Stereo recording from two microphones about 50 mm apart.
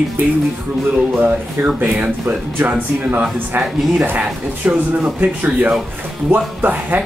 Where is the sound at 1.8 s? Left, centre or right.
Right.